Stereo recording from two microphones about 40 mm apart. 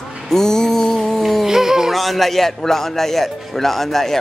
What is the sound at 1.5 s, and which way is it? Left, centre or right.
Speech, centre.